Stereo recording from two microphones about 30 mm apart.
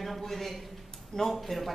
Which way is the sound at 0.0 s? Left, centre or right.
Centre.